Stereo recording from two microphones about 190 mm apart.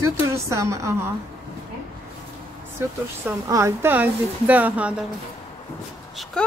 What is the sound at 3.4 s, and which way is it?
A woman's voice, 15° right (ahead or behind).